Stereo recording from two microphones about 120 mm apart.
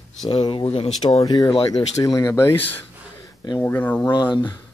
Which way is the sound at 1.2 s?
35° left (ahead or behind).